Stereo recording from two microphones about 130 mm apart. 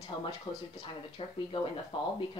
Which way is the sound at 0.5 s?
35° left (ahead or behind).